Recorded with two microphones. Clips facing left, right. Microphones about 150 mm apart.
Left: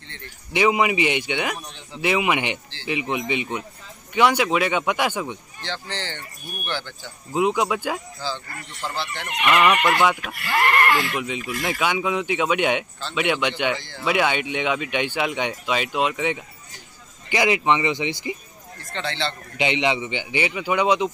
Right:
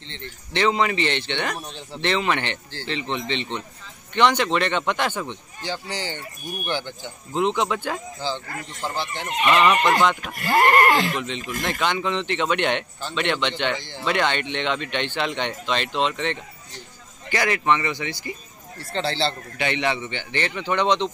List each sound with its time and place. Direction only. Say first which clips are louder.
0.5 s speech: left 2 dB; 10° left (ahead or behind)
5.6 s speech: right 3 dB; 10° right (ahead or behind)
7.3 s speech: left 1 dB; 5° left (ahead or behind)
8.2 s speech: right 2 dB; 20° right (ahead or behind)
10.3 s speech: right 4 dB; 40° right (ahead or behind)
11.1 s speech: left 1 dB; 10° left (ahead or behind)
13.7 s speech: right 2 dB; 20° right (ahead or behind)
14.0 s speech: left 1 dB; 5° left (ahead or behind)
18.8 s speech: right 4 dB; 35° right (ahead or behind)
19.5 s speech: left 2 dB; 15° left (ahead or behind)